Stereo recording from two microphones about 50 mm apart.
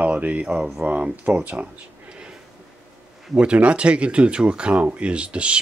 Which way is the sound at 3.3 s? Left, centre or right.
Right.